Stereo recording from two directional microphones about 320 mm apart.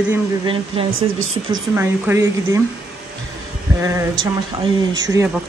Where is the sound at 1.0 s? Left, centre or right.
Right.